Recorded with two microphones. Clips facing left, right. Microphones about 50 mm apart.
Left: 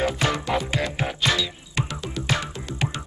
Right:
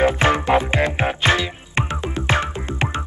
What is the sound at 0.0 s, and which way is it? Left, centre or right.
Music, right.